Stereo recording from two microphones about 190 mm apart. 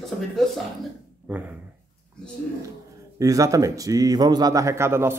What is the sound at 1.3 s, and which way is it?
Speech, 10° right (ahead or behind).